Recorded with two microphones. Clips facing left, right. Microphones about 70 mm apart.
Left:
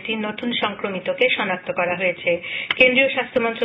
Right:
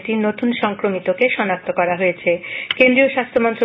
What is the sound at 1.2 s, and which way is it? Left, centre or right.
Speech, right.